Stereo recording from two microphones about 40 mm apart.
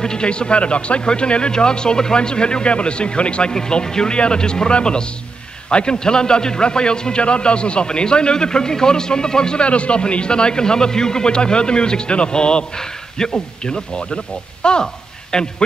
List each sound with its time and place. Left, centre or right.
0.0 s a man's voice: centre
3.5 s a man's voice: centre